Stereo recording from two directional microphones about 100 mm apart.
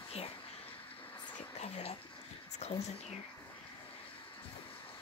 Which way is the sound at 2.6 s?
90° left.